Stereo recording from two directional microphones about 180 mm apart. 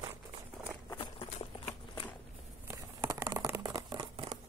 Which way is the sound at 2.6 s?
15° right (ahead or behind).